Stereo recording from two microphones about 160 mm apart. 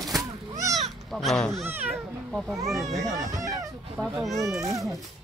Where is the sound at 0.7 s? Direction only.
Centre (ahead or behind).